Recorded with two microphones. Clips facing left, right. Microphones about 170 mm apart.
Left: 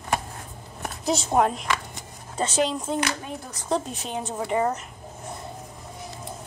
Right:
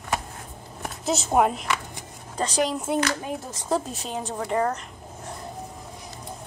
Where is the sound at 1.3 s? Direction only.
5° right (ahead or behind).